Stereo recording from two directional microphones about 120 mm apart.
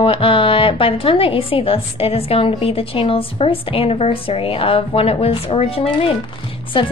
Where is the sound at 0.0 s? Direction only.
50° left (ahead or behind).